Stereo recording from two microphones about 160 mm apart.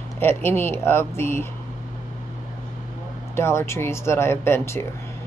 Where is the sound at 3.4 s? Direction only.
15° left (ahead or behind).